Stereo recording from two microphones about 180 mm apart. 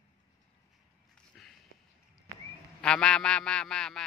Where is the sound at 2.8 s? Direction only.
5° left (ahead or behind).